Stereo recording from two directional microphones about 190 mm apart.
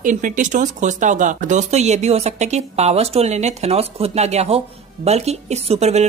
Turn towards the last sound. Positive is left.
turn(degrees=-35)  # may be behind; listen again after turning